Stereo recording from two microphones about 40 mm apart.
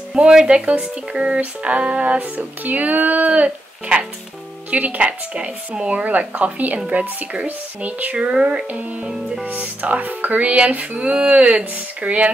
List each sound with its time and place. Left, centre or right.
0.1 s speech: right
8.3 s music: right
9.5 s speech: right